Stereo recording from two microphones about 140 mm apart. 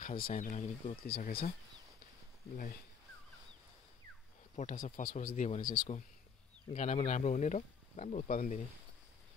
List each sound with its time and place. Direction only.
0.0 s speech: 85° left; by 0.7 s 65° left (ahead or behind)
1.0 s speech: 90° left
4.6 s speech: 60° left (ahead or behind)